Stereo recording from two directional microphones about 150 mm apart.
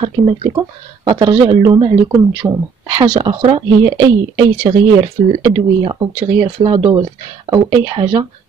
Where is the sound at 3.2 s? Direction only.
35° right (ahead or behind).